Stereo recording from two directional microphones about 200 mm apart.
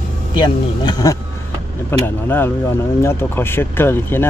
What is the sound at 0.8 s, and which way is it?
Speech, 20° left (ahead or behind).